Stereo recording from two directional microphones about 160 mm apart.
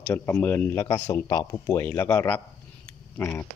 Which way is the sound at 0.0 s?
15° left (ahead or behind).